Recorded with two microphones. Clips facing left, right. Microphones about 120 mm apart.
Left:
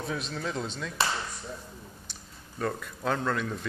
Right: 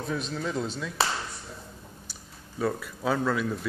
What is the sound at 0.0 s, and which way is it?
Speech, centre (ahead or behind).